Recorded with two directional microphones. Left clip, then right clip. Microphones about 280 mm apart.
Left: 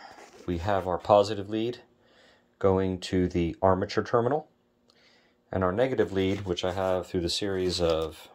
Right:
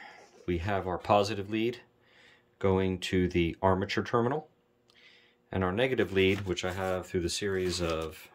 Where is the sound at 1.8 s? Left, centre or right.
Centre.